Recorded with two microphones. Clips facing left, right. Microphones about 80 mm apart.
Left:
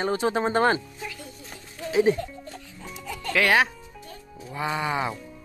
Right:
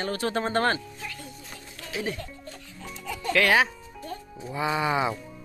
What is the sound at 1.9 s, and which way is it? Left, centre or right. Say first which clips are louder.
Music: left 11 dB; left.